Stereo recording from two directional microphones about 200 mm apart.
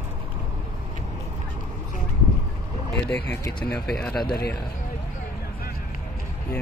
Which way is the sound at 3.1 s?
10° left (ahead or behind).